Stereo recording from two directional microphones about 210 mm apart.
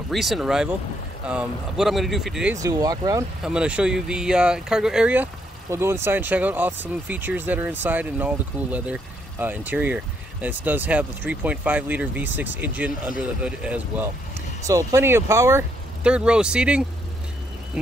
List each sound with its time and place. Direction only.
0.1 s speech: centre (ahead or behind)
2.5 s speech: 15° right (ahead or behind)
3.4 s speech: 5° right (ahead or behind)